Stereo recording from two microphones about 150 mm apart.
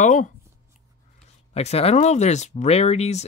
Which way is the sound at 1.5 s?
45° left (ahead or behind).